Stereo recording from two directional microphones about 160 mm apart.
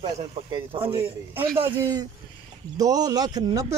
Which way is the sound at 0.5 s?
35° right (ahead or behind).